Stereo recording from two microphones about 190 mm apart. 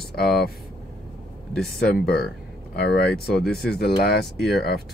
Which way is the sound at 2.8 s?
60° left (ahead or behind).